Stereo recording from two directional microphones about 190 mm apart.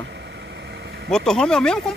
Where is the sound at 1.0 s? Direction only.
5° left (ahead or behind).